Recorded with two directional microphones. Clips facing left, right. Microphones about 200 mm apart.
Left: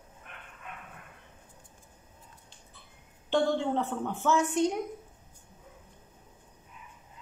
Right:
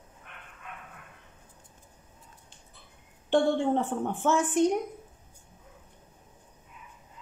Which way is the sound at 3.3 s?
50° right (ahead or behind).